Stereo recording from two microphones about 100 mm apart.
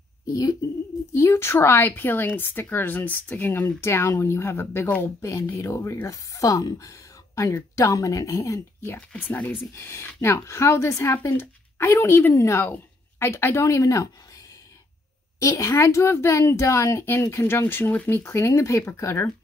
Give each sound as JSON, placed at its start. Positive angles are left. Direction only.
{"t": 0.3, "sound": "speech", "side_deg": 35}
{"t": 1.1, "sound": "speech", "side_deg": 25}
{"t": 5.2, "sound": "speech", "side_deg": 30}
{"t": 15.3, "sound": "speech", "side_deg": 30}